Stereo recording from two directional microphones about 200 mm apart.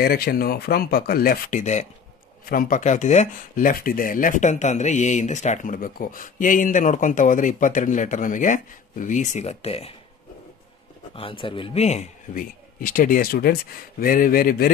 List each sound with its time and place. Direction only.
0.0 s speech: 50° left (ahead or behind); by 9.9 s 30° left (ahead or behind)
11.1 s speech: 25° left (ahead or behind); by 14.7 s 45° left (ahead or behind)